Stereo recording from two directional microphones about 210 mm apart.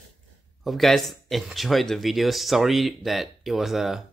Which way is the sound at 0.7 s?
Centre (ahead or behind).